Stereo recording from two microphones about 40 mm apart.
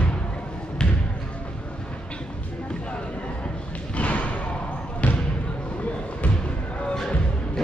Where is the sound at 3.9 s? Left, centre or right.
Left.